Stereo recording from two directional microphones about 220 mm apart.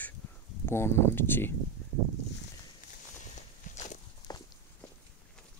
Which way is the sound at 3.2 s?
35° left (ahead or behind).